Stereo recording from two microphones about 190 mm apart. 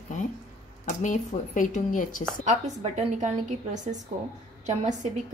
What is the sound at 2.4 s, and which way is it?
A woman's voice, 40° right (ahead or behind).